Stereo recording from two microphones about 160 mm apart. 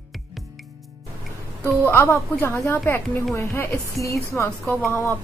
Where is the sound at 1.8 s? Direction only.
15° left (ahead or behind).